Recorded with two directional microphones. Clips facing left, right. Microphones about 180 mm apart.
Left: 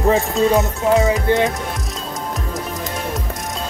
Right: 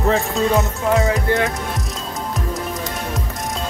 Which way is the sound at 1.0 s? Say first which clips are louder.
Left 2 dB; 20° left (ahead or behind).